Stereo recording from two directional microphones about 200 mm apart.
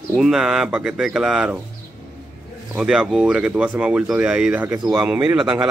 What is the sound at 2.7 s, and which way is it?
Speech, 5° right (ahead or behind).